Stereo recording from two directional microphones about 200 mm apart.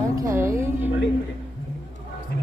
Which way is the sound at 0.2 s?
15° right (ahead or behind).